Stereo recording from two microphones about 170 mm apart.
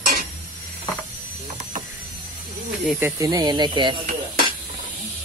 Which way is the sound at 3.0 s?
15° right (ahead or behind).